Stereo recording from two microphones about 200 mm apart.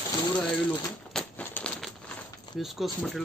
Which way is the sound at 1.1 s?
5° left (ahead or behind).